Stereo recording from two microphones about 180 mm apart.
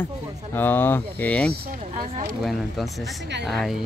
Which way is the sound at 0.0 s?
10° left (ahead or behind).